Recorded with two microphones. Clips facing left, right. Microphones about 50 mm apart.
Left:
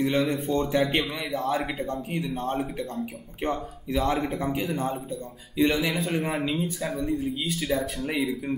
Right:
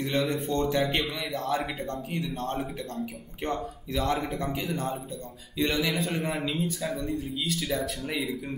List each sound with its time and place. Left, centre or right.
0.0 s speech: centre
0.3 s speech: centre
1.4 s speech: centre